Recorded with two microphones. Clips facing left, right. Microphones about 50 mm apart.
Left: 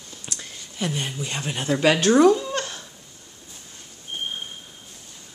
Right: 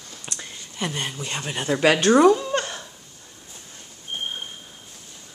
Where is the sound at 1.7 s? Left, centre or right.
Centre.